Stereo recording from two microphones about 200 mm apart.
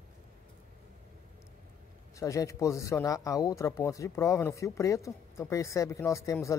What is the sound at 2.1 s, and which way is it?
Speech, 15° left (ahead or behind).